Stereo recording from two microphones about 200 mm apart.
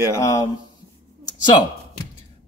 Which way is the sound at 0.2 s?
15° left (ahead or behind).